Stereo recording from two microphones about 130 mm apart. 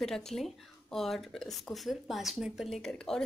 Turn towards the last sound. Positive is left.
turn(degrees=5)  # may be behind; listen again after turning